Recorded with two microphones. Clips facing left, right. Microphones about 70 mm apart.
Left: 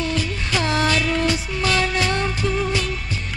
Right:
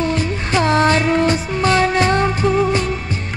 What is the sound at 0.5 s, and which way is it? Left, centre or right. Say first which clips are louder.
Music: right 6 dB; right.